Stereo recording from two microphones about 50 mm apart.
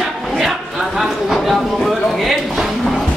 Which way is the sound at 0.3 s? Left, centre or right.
Centre.